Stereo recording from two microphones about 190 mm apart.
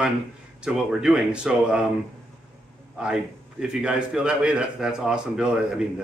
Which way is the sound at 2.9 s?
5° right (ahead or behind).